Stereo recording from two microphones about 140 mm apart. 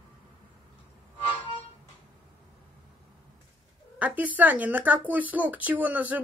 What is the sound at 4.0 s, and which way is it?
Speech, 10° right (ahead or behind).